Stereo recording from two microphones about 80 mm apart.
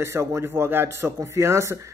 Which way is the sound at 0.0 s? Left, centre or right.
Right.